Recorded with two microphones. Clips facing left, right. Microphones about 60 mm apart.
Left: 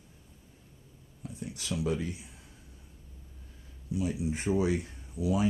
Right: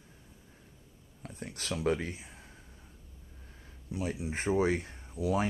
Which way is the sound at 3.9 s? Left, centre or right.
Right.